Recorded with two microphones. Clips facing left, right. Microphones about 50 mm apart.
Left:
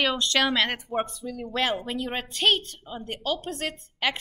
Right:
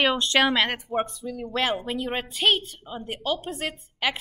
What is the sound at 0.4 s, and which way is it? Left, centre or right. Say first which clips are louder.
A woman's voice: right 2 dB; centre.